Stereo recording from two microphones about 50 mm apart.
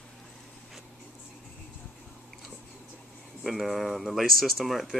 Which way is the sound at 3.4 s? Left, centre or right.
Centre.